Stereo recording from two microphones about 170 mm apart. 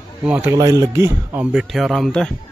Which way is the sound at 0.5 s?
20° right (ahead or behind).